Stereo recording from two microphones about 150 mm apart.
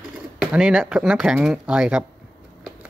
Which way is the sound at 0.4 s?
5° right (ahead or behind).